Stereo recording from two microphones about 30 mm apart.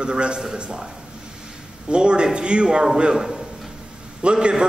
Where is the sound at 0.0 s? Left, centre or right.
Right.